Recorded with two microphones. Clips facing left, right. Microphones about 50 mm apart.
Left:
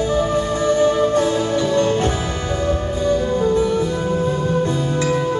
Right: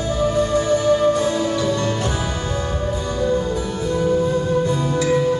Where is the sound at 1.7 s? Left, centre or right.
Left.